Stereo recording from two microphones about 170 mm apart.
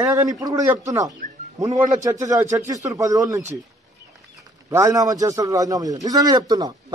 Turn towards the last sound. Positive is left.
turn(degrees=-25)  # may be behind; listen again after turning